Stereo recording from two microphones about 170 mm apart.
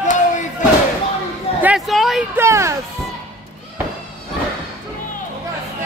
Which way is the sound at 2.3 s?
15° right (ahead or behind).